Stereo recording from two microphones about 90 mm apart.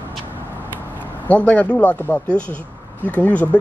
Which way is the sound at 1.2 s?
15° left (ahead or behind).